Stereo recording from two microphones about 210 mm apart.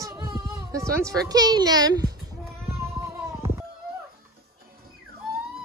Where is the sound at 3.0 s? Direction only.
10° right (ahead or behind).